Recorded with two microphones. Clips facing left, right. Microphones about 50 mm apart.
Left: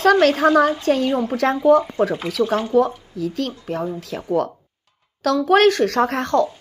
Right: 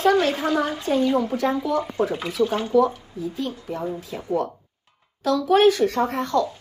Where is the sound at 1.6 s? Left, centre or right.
Left.